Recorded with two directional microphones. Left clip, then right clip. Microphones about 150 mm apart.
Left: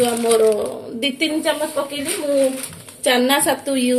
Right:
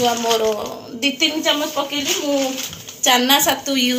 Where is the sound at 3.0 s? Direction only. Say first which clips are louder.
Right 2 dB; 75° left (ahead or behind).